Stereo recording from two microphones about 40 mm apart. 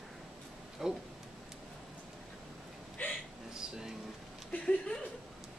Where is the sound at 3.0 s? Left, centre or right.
Left.